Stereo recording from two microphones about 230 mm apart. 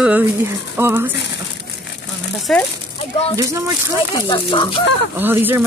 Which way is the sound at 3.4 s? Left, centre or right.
Centre.